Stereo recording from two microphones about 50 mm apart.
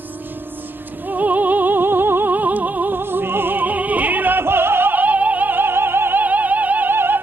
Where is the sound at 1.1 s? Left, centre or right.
Right.